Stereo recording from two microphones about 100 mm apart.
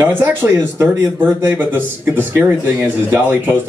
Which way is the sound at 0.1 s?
20° right (ahead or behind).